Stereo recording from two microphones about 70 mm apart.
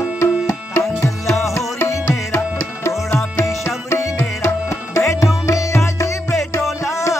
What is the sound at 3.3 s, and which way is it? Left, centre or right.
Tabla, left.